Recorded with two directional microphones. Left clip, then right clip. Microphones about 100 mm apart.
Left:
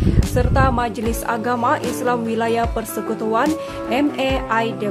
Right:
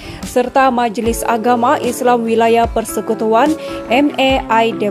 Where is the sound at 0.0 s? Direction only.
60° right (ahead or behind).